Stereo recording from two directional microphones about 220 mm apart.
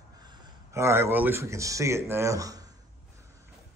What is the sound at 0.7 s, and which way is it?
Speech, 10° right (ahead or behind).